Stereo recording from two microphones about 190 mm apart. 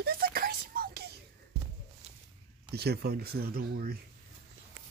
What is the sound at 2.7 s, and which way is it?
Speech, 55° right (ahead or behind).